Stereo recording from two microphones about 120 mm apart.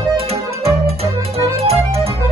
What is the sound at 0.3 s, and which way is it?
Music, 55° right (ahead or behind).